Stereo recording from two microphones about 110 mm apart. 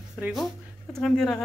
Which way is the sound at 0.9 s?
5° left (ahead or behind).